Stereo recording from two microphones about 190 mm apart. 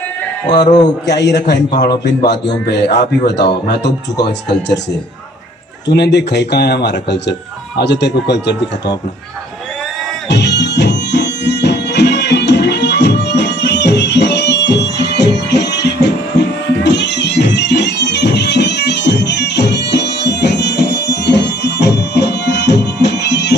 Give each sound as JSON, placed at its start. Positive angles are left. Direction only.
{"t": 1.0, "sound": "speech", "side_deg": 65}
{"t": 5.9, "sound": "speech", "side_deg": 65}
{"t": 10.2, "sound": "music", "side_deg": 65}